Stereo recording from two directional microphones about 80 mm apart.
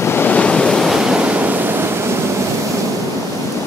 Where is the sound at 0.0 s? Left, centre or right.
Left.